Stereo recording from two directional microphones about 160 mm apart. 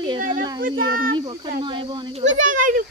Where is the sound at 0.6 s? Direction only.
60° right (ahead or behind).